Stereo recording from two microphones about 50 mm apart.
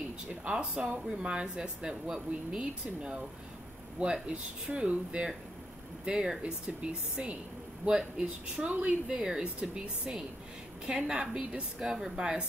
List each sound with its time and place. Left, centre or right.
0.3 s speech: centre